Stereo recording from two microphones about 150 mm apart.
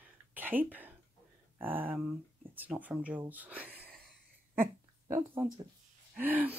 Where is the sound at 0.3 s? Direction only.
10° right (ahead or behind).